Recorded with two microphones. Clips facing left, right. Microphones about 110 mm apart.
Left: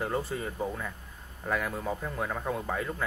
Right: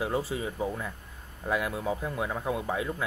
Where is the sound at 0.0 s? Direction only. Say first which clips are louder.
Right 2 dB; 5° right (ahead or behind).